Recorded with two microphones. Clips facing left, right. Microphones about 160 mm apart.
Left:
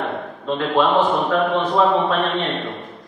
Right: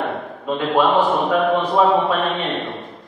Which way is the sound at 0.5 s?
10° right (ahead or behind).